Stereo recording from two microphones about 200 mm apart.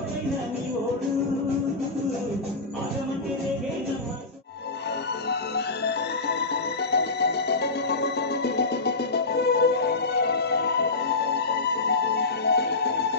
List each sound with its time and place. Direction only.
5.9 s music: 55° left (ahead or behind)